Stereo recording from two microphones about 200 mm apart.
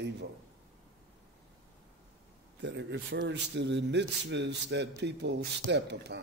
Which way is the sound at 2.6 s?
60° right (ahead or behind).